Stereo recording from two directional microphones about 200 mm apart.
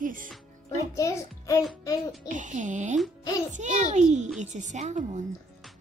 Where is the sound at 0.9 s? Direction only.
15° left (ahead or behind).